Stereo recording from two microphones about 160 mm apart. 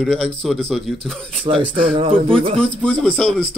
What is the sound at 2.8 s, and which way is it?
Speech, centre (ahead or behind).